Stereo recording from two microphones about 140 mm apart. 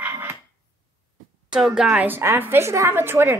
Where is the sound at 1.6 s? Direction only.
5° right (ahead or behind).